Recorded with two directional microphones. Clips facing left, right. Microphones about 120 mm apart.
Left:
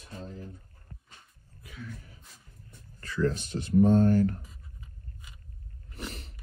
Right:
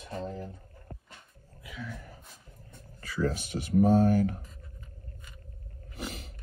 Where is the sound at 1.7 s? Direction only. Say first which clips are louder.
Right 2 dB; 90° right.